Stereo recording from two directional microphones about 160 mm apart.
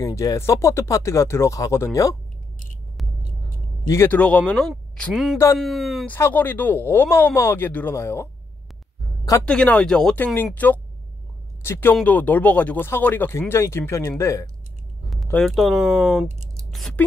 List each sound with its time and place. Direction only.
0.0 s speech: 20° left (ahead or behind)
3.0 s a sound: centre (ahead or behind)
3.8 s speech: 15° left (ahead or behind); by 6.0 s centre (ahead or behind)
6.0 s speech: 10° left (ahead or behind)
9.4 s speech: 5° left (ahead or behind)
15.3 s speech: centre (ahead or behind)